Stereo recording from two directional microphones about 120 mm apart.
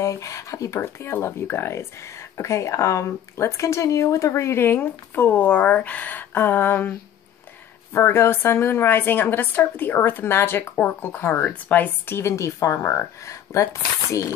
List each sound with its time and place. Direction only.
0.0 s speech: 25° left (ahead or behind)